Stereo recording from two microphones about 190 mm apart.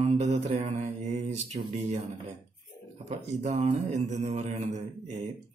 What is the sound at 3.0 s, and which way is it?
Speech, 40° right (ahead or behind).